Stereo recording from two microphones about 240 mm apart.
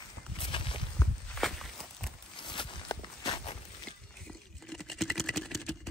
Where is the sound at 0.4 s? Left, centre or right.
Left.